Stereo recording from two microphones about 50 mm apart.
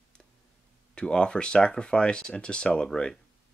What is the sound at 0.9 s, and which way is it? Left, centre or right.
Speech, centre.